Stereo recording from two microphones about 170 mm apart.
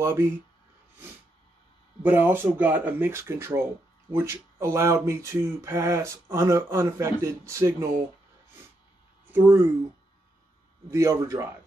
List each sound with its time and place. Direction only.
0.0 s speech: 15° right (ahead or behind)
2.0 s speech: 10° right (ahead or behind)
9.3 s speech: 10° right (ahead or behind)
10.9 s speech: 15° right (ahead or behind)